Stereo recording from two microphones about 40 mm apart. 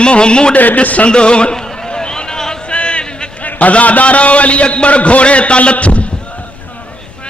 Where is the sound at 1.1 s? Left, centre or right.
Left.